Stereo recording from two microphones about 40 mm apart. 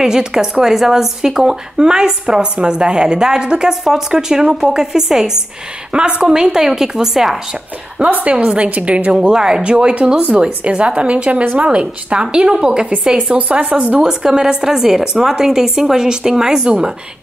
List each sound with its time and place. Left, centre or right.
0.0 s a woman's voice: centre
13.4 s speech: right
14.0 s speech: centre